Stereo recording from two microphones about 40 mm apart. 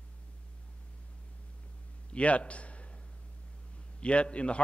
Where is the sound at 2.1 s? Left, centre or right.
Left.